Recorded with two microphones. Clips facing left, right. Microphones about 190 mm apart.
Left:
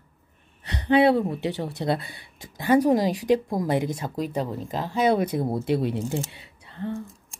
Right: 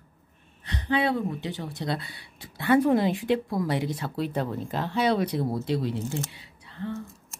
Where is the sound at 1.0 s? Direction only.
65° left (ahead or behind).